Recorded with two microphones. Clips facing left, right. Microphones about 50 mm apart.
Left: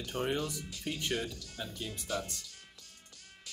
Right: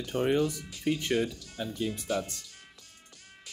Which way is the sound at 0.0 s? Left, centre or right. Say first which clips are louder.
Right 7 dB; right.